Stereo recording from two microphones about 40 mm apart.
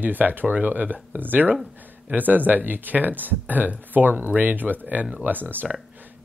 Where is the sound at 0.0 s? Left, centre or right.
Right.